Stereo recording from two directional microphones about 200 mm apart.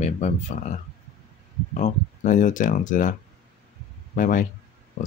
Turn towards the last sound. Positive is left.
turn(degrees=45)  # may be behind; listen again after turning